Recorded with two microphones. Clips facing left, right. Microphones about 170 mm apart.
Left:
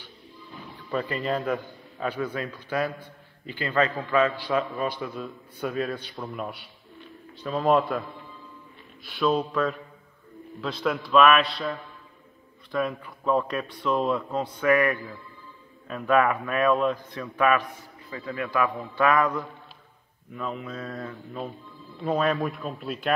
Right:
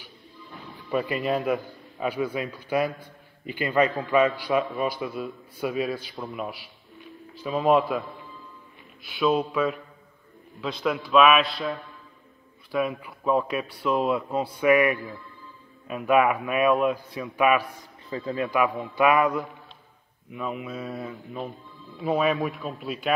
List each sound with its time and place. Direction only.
0.8 s a man's voice: 10° right (ahead or behind)
9.0 s a man's voice: centre (ahead or behind)
18.1 s a man's voice: 25° right (ahead or behind)
22.0 s a man's voice: 5° right (ahead or behind)